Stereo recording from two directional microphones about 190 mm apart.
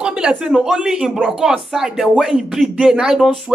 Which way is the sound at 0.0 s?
5° right (ahead or behind).